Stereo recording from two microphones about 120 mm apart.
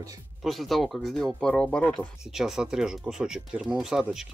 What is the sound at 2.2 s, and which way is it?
Speech, 5° right (ahead or behind).